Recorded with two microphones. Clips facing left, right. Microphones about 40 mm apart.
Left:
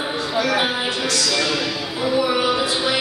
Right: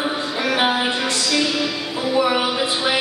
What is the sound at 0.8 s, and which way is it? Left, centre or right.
Music, right.